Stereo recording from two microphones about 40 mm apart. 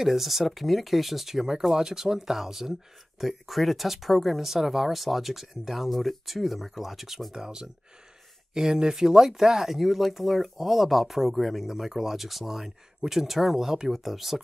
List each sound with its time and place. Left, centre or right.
0.0 s speech: centre
7.3 s speech: centre